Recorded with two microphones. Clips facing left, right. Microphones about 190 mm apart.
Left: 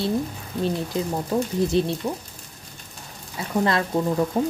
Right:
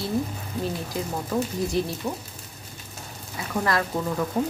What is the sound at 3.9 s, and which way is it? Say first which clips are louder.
Stir: left 5 dB; 20° left (ahead or behind).